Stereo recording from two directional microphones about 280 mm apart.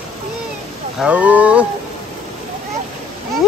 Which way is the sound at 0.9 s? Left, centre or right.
Centre.